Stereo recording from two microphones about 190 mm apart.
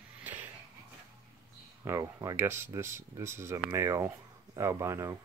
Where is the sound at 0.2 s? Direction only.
10° right (ahead or behind).